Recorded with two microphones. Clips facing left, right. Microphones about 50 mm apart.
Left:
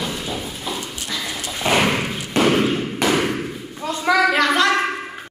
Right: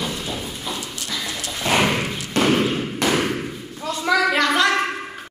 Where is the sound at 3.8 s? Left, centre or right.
Left.